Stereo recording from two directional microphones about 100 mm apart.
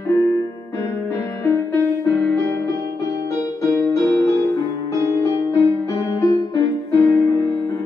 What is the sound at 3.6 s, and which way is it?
Music, 35° left (ahead or behind).